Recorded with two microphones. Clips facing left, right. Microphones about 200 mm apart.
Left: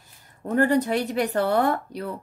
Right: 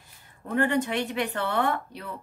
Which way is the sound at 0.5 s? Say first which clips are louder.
Left 4 dB; 40° left (ahead or behind).